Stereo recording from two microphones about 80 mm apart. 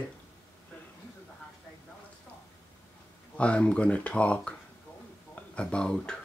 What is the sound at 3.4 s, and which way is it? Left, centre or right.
Speech, centre.